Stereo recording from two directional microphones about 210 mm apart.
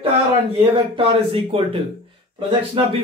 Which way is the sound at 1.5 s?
25° right (ahead or behind).